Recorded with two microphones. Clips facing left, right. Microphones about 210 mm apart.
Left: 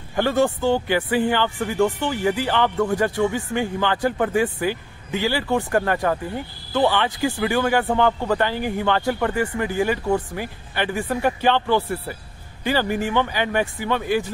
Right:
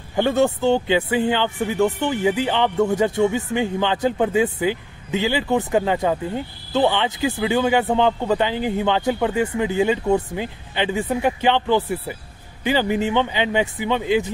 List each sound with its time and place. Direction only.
0.1 s speech: 20° right (ahead or behind)